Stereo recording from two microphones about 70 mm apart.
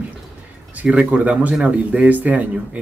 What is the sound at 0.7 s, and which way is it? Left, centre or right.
Speech, right.